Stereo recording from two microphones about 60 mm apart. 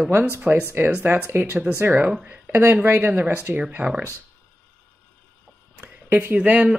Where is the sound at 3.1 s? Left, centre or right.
Right.